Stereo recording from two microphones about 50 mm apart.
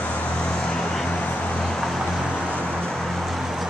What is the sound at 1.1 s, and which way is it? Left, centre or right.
Vehicle, left.